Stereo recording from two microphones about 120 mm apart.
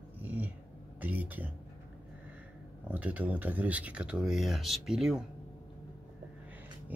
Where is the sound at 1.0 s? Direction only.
15° right (ahead or behind).